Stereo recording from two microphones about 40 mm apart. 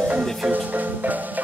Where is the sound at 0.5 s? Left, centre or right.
Right.